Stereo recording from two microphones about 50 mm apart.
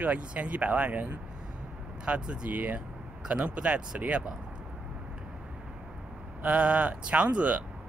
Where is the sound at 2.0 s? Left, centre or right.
Right.